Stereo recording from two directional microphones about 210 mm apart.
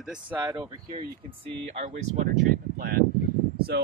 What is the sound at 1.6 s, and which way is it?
Speech, 35° right (ahead or behind).